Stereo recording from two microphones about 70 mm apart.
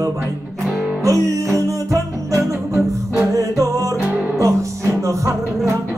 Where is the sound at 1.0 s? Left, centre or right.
Right.